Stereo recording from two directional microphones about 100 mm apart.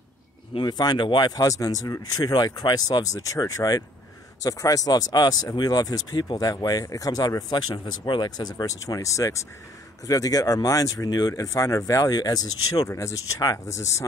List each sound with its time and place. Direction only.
0.6 s speech: 45° left (ahead or behind)